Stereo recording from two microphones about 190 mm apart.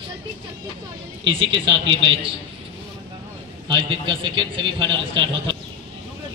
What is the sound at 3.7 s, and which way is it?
A man's voice, 25° right (ahead or behind).